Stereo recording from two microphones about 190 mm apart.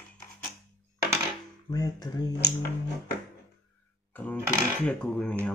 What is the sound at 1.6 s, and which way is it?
Speech, 20° left (ahead or behind).